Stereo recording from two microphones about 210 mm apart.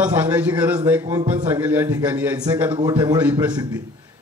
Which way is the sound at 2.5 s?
20° right (ahead or behind).